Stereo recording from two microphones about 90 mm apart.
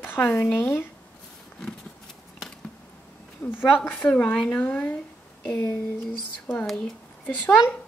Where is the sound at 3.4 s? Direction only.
20° left (ahead or behind); by 6.9 s 5° left (ahead or behind).